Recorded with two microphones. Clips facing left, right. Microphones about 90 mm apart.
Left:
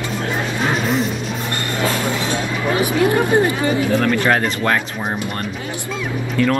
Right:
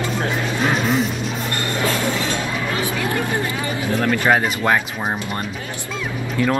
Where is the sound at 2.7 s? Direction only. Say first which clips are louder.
Left 9 dB; 25° left (ahead or behind).